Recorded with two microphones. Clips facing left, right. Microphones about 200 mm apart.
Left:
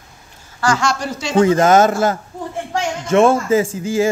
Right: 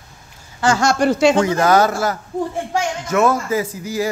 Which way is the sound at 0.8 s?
50° right (ahead or behind).